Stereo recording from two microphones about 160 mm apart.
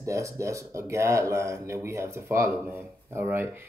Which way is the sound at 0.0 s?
20° right (ahead or behind).